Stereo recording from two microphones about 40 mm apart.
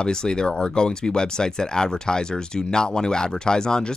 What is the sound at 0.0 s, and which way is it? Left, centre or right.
Speech, centre.